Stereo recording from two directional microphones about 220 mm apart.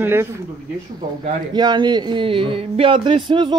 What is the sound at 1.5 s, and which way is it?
Speech, 20° right (ahead or behind).